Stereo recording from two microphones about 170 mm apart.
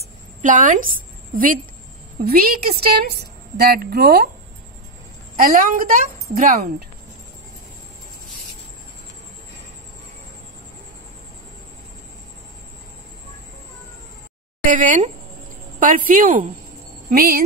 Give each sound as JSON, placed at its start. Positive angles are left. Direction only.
{"t": 0.4, "sound": "a woman's voice", "side_deg": -50}
{"t": 5.3, "sound": "a woman's voice", "side_deg": -55}
{"t": 14.7, "sound": "a woman's voice", "side_deg": -50}